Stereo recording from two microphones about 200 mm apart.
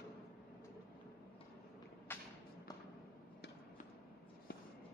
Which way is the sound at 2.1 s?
10° left (ahead or behind).